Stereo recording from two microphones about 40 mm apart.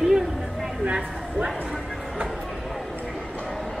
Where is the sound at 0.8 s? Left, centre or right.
Right.